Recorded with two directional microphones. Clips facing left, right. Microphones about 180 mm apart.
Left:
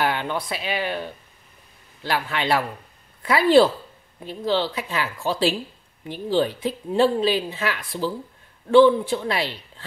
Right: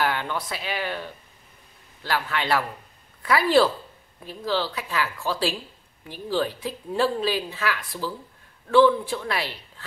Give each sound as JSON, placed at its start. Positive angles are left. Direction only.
{"t": 0.0, "sound": "a woman's voice", "side_deg": 20}
{"t": 2.0, "sound": "a woman's voice", "side_deg": 20}